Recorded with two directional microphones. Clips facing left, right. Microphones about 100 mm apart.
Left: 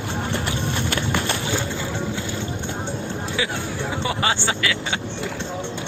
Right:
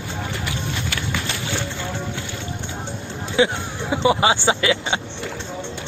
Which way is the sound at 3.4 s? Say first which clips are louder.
Right 10 dB; 30° right (ahead or behind).